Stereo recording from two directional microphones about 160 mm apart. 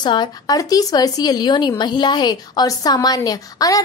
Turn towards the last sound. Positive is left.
turn(degrees=25)  # may be behind; listen again after turning